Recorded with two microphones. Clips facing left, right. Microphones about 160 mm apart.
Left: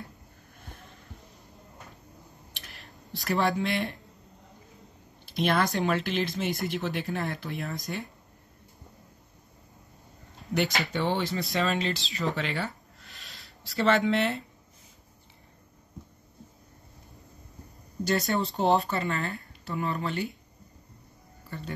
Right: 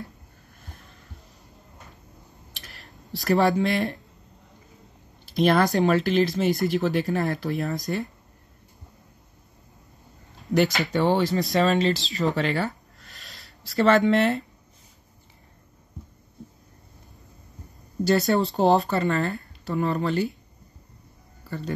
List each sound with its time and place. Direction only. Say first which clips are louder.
2.5 s a sound: right 3 dB; 40° right (ahead or behind)
5.2 s speech: right 6 dB; 40° right (ahead or behind)
10.9 s speech: right 7 dB; 40° right (ahead or behind)
12.4 s a sound: right 6 dB; 40° right (ahead or behind)
18.0 s speech: right 6 dB; 35° right (ahead or behind)
21.5 s speech: right 7 dB; 35° right (ahead or behind)